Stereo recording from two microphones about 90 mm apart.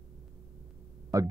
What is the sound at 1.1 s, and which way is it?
Speech, 40° right (ahead or behind).